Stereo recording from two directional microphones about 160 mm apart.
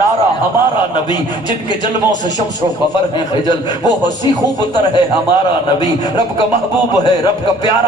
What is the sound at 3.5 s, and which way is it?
Speech, 25° left (ahead or behind).